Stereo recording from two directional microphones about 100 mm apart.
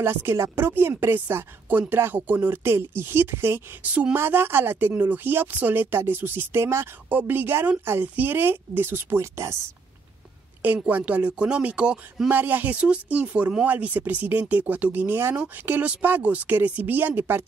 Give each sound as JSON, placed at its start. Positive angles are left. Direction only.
{"t": 0.0, "sound": "speech", "side_deg": -20}
{"t": 10.6, "sound": "speech", "side_deg": -15}